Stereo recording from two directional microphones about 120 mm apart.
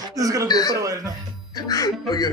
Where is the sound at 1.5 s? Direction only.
30° left (ahead or behind).